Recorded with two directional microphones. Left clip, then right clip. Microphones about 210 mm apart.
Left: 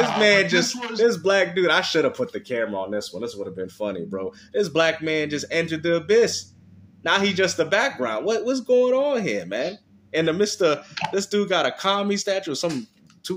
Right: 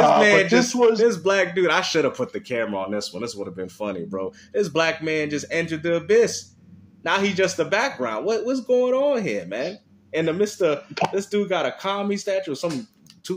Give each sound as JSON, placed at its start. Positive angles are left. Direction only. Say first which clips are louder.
{"t": 0.2, "sound": "a man's voice", "louder": "right 1 dB", "side_deg": 5}